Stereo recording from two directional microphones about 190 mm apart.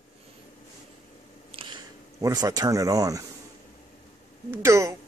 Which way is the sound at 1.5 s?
25° right (ahead or behind).